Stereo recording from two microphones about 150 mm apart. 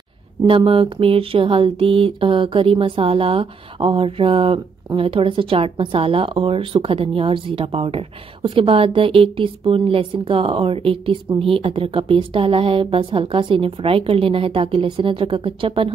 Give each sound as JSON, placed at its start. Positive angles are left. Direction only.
{"t": 0.5, "sound": "speech", "side_deg": -35}